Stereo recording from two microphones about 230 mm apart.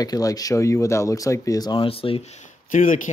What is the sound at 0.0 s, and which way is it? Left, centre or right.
Speech, centre.